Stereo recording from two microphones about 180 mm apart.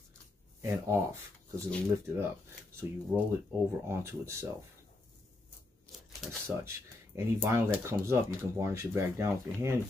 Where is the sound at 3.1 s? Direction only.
10° right (ahead or behind).